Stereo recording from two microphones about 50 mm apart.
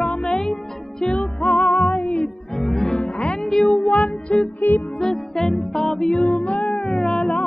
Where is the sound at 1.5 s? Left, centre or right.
Centre.